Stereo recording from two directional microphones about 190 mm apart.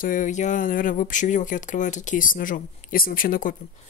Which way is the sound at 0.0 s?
45° left (ahead or behind).